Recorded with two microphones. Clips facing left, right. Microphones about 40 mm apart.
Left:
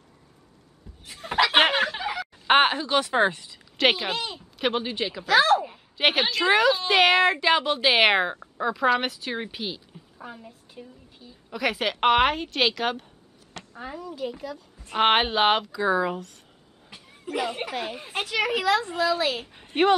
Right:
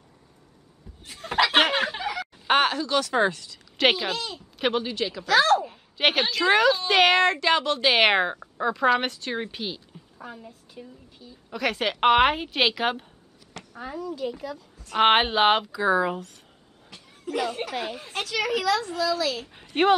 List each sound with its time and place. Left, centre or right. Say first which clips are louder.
1.0 s chicken: even; centre
1.6 s a sound: left 3 dB; centre
2.4 s speech: left 2 dB; left
3.7 s speech: even; centre
4.1 s a woman's voice: left 1 dB; left; by 13.1 s centre
13.7 s a woman's voice: right 2 dB; centre
16.9 s speech: right 1 dB; centre; by 19.4 s left
19.7 s speech: even; centre